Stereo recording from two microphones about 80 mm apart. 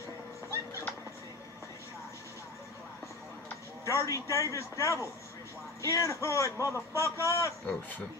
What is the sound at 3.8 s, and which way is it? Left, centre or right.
A man's voice, left.